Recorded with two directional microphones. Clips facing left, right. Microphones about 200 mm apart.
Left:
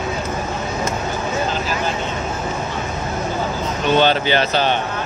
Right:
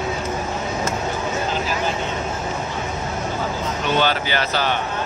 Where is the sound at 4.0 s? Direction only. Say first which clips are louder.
Left 5 dB; 25° left (ahead or behind).